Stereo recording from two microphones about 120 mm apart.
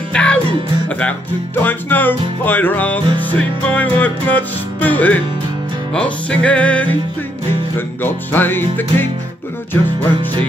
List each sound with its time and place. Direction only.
0.1 s music: 10° left (ahead or behind)